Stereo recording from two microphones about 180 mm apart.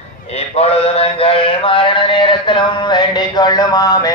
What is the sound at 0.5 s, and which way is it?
Mantra, 35° left (ahead or behind).